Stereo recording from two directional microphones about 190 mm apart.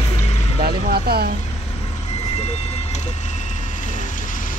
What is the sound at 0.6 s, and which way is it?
Speech, 55° right (ahead or behind).